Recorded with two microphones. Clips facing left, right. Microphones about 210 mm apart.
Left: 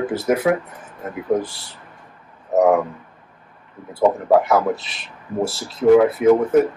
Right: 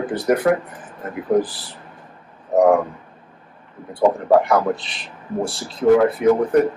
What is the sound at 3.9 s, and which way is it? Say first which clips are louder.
Speech: even; centre (ahead or behind).